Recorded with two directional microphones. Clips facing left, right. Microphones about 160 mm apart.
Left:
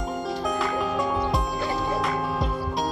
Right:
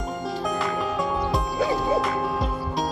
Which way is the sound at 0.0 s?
Centre (ahead or behind).